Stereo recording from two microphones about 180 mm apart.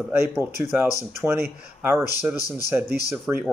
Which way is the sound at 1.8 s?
10° right (ahead or behind).